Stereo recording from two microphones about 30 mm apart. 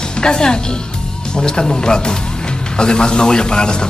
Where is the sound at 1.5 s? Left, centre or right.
Left.